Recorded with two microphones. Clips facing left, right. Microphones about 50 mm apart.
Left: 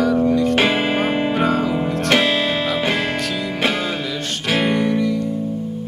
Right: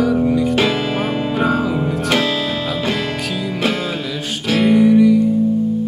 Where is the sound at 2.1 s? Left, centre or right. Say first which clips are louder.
Left 3 dB; left.